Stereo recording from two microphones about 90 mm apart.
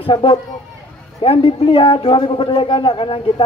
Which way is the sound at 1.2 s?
90° left.